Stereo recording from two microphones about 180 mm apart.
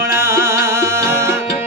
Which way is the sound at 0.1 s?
15° right (ahead or behind).